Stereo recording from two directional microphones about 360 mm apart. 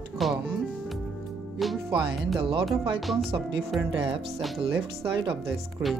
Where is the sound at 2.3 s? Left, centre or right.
Centre.